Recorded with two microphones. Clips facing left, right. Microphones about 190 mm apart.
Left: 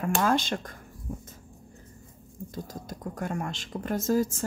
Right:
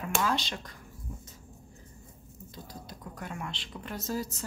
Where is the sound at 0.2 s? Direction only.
50° left (ahead or behind).